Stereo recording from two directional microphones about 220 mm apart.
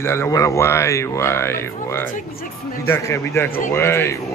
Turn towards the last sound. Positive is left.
turn(degrees=10)  # may be behind; listen again after turning